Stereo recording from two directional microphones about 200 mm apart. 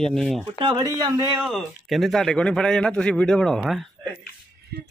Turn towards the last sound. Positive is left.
turn(degrees=0)  # may be behind; listen again after turning